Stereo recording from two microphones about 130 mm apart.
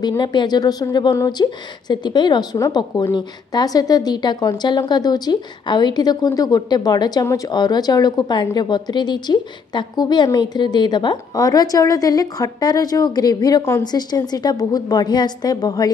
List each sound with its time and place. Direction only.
0.2 s a woman's voice: 35° left (ahead or behind)